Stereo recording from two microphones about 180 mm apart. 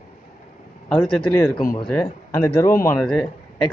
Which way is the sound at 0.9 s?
5° left (ahead or behind).